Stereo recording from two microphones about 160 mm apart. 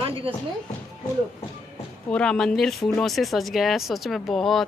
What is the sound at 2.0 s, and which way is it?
Speech, 5° left (ahead or behind).